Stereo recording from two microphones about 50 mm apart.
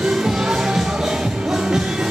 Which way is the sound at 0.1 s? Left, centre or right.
Centre.